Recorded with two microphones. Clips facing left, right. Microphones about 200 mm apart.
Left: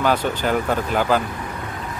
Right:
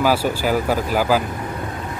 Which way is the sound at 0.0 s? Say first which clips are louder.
Right 2 dB; 5° right (ahead or behind).